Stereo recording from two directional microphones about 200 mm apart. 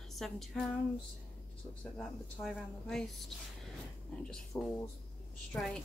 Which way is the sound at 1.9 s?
5° left (ahead or behind).